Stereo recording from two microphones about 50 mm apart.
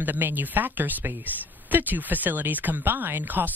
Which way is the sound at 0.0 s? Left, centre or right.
Right.